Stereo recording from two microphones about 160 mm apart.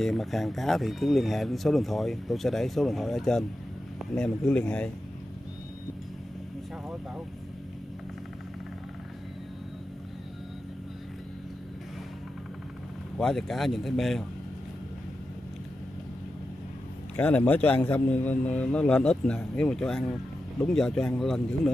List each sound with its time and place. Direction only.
0.0 s speech: centre (ahead or behind)
13.2 s speech: 5° left (ahead or behind)
17.2 s a man's voice: 10° left (ahead or behind)